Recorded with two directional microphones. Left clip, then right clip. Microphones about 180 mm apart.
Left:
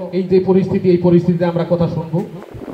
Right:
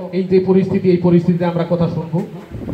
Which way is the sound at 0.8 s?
25° left (ahead or behind).